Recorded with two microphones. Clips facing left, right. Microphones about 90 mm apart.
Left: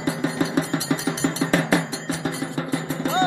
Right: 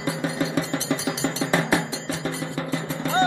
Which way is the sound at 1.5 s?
20° right (ahead or behind).